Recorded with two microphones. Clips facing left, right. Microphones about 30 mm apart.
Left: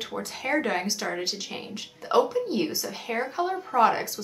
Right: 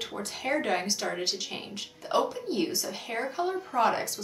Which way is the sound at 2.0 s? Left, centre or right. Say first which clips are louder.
Left 5 dB; centre.